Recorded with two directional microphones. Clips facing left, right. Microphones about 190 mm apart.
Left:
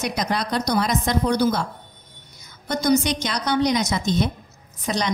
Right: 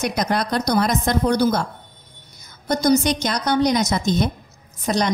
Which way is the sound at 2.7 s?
40° right (ahead or behind).